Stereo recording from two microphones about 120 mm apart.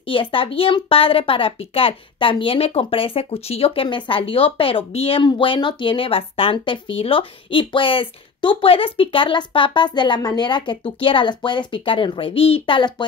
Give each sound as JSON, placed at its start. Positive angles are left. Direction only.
{"t": 0.1, "sound": "a woman's voice", "side_deg": 45}